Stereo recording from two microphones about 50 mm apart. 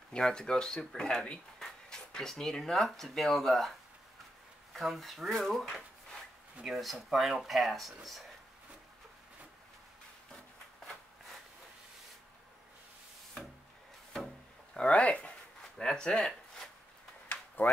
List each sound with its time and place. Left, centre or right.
0.1 s speech: centre
4.7 s speech: centre
14.9 s speech: left
15.8 s speech: centre
17.6 s speech: left